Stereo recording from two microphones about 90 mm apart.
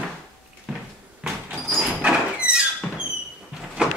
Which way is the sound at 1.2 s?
5° right (ahead or behind).